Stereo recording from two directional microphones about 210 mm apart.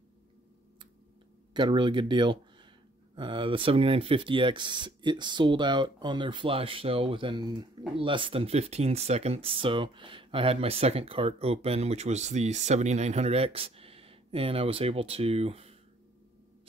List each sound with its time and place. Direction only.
1.5 s speech: 25° right (ahead or behind)